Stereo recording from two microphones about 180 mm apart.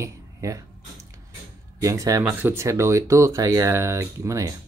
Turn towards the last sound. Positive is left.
turn(degrees=-15)  # may be behind; listen again after turning